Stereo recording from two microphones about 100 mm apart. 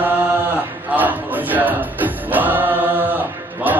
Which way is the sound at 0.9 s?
15° right (ahead or behind).